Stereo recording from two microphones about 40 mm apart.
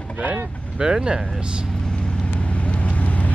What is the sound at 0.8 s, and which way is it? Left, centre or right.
Speech, centre.